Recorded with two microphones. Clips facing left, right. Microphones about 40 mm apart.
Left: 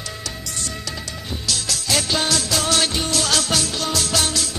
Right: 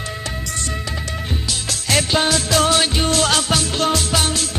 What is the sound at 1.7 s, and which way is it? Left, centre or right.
Music, right.